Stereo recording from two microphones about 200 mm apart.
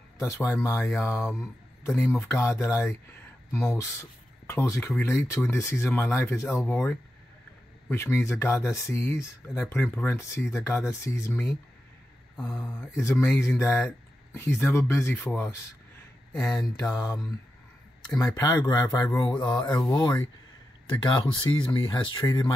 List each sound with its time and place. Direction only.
0.2 s speech: 10° left (ahead or behind)
16.9 s speech: 15° left (ahead or behind)